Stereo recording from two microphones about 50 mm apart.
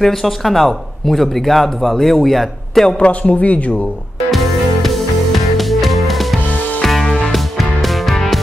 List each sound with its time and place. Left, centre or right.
0.0 s speech: centre
3.0 s a man's voice: left
4.3 s music: centre